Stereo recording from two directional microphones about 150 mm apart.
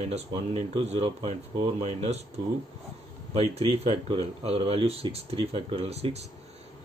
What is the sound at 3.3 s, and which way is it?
Speech, 40° right (ahead or behind).